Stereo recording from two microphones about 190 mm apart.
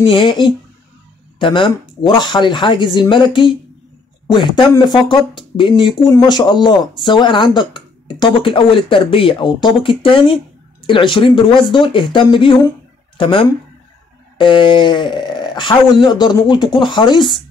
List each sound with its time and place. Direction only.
0.0 s speech: 25° left (ahead or behind)